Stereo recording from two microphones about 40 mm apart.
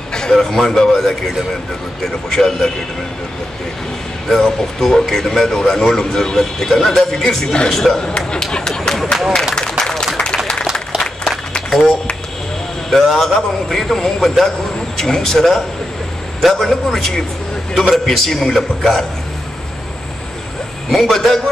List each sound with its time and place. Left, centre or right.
0.1 s speech: centre
2.2 s a man's voice: centre
4.3 s a man's voice: centre
9.6 s a sound: centre
12.9 s a man's voice: centre
20.9 s a man's voice: centre